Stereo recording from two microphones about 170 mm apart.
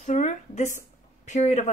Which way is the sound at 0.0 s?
45° left (ahead or behind).